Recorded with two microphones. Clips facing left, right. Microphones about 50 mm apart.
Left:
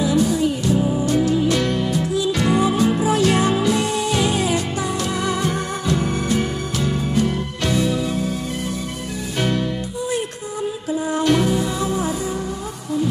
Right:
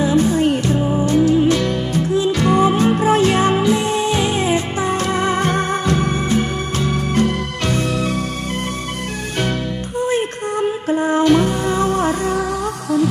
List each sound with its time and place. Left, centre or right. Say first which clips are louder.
0.0 s music: right 3 dB; right
0.7 s music: right 3 dB; right
5.5 s music: right 4 dB; right
6.9 s music: right 3 dB; right
9.9 s music: right 9 dB; right